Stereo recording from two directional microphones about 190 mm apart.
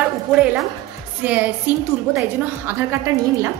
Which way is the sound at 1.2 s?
10° right (ahead or behind).